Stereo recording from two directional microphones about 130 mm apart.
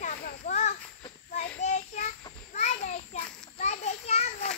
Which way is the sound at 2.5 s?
65° left (ahead or behind).